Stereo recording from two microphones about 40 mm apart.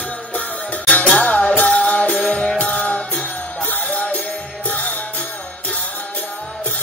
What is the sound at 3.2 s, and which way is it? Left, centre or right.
Music, left.